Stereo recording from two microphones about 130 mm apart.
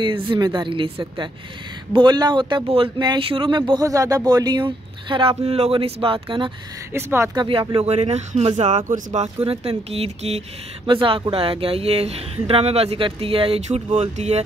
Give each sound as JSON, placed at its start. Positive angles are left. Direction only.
{"t": 0.0, "sound": "speech", "side_deg": -40}
{"t": 5.4, "sound": "speech", "side_deg": -50}
{"t": 6.9, "sound": "speech", "side_deg": -20}
{"t": 7.3, "sound": "speech", "side_deg": -45}
{"t": 7.7, "sound": "speech", "side_deg": -55}
{"t": 9.4, "sound": "speech", "side_deg": -50}
{"t": 10.9, "sound": "speech", "side_deg": -40}